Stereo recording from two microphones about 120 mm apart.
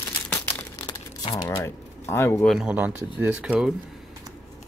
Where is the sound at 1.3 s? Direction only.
25° left (ahead or behind).